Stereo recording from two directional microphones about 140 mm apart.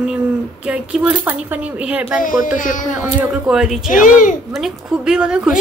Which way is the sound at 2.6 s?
65° left (ahead or behind).